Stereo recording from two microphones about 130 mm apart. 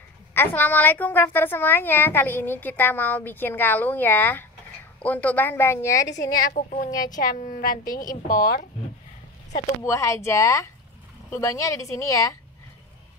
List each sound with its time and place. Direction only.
0.3 s a woman's voice: 15° left (ahead or behind)
6.5 s speech: 70° left (ahead or behind)
7.2 s a woman's voice: 80° left
9.8 s a woman's voice: 20° left (ahead or behind)